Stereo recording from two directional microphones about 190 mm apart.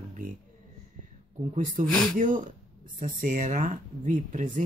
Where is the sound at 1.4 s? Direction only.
40° right (ahead or behind).